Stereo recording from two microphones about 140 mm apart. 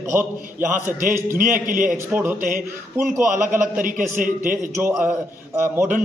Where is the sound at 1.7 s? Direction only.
70° right (ahead or behind).